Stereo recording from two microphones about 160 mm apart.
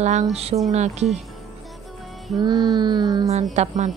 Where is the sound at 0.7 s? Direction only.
45° right (ahead or behind).